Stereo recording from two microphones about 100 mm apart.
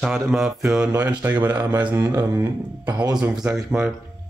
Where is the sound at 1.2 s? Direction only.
20° right (ahead or behind).